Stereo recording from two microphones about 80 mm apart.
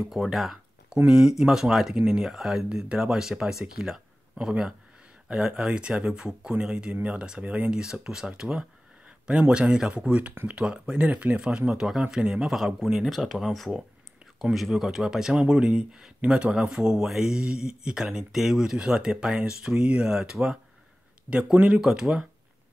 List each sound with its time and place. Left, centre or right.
0.0 s speech: centre